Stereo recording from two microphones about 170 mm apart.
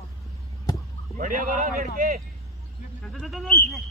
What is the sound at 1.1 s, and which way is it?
A man's voice, 55° right (ahead or behind).